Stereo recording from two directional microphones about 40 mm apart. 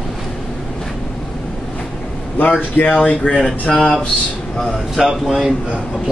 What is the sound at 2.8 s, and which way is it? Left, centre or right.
Speech, left.